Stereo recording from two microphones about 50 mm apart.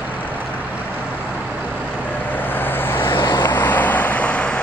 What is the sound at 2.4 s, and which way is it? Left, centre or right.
Vehicle, left.